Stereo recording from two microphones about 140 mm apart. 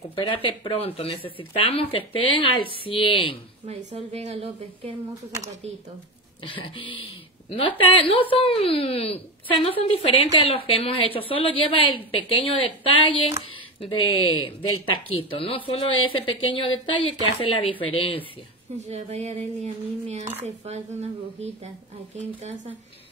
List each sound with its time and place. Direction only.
0.1 s speech: 40° left (ahead or behind)
3.6 s a woman's voice: 50° right (ahead or behind)
6.4 s speech: 40° left (ahead or behind)
18.9 s a woman's voice: 55° right (ahead or behind)